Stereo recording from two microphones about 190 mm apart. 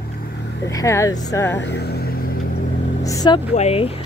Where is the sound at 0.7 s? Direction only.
15° left (ahead or behind).